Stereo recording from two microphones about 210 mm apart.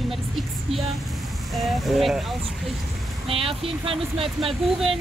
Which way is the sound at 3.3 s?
25° right (ahead or behind).